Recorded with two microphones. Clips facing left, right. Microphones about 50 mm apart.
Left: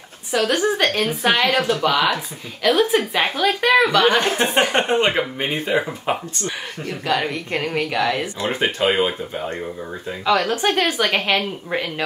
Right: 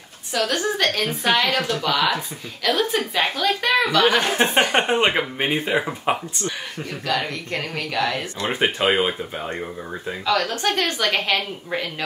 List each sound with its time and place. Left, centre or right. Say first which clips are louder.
0.4 s speech: left 3 dB; centre
4.7 s speech: left 1 dB; centre
6.4 s speech: left 1 dB; centre
8.4 s speech: left 1 dB; centre
10.2 s speech: left 3 dB; centre